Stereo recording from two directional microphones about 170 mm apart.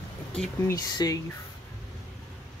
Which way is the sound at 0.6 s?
25° left (ahead or behind).